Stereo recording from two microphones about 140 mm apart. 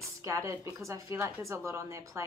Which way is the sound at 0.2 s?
20° right (ahead or behind).